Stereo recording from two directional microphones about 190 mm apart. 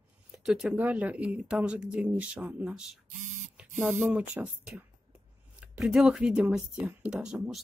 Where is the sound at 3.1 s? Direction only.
40° right (ahead or behind).